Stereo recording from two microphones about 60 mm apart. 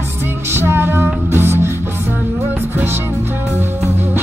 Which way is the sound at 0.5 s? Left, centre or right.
Right.